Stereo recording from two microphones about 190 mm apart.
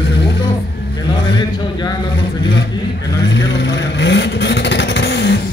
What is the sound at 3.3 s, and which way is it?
Vehicle, 65° left (ahead or behind).